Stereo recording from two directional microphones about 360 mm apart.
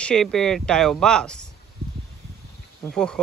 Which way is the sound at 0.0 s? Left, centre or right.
Centre.